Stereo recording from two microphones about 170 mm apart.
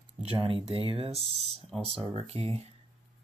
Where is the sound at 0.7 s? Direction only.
35° right (ahead or behind).